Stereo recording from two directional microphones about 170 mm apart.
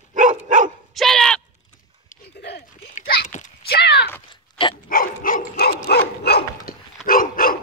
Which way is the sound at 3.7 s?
75° left (ahead or behind).